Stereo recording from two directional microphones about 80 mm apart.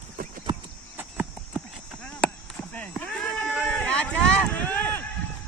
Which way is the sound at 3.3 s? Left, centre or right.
Centre.